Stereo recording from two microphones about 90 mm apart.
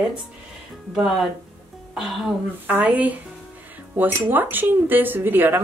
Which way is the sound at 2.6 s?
15° right (ahead or behind).